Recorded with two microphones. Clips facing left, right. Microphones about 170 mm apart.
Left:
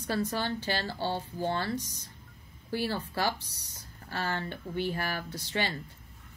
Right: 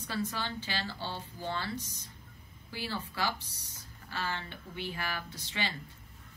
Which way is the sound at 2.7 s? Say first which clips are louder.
Left 7 dB; 50° left (ahead or behind).